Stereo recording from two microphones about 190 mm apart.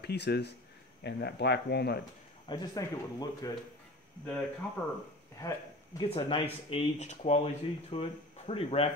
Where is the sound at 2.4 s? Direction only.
20° left (ahead or behind).